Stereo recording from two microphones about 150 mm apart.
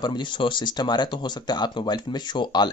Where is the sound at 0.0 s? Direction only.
30° left (ahead or behind).